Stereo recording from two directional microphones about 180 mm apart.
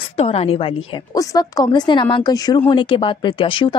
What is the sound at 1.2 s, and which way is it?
A woman's voice, 20° left (ahead or behind).